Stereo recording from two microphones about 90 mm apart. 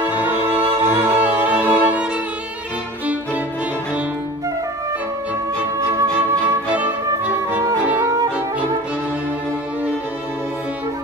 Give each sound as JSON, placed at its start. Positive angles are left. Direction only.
{"t": 0.0, "sound": "music", "side_deg": -20}
{"t": 6.4, "sound": "music", "side_deg": -15}